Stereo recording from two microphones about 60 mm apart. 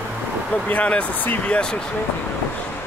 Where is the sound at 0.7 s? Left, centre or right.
Left.